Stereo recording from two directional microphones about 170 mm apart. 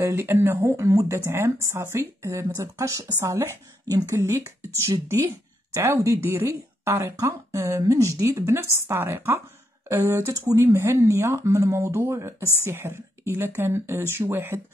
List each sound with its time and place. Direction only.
0.0 s speech: 15° right (ahead or behind)